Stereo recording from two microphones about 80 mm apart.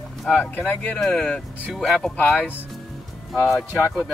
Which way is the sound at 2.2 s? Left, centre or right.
Left.